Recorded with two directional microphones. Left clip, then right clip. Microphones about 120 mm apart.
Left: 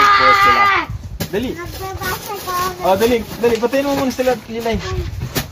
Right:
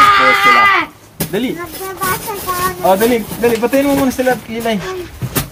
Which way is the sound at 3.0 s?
15° right (ahead or behind).